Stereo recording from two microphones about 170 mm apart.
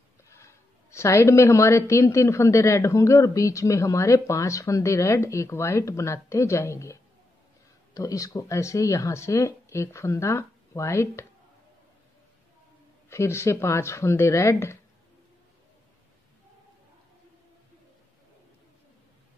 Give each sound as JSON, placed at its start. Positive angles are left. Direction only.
{"t": 0.4, "sound": "a woman's voice", "side_deg": 15}
{"t": 13.1, "sound": "a woman's voice", "side_deg": 15}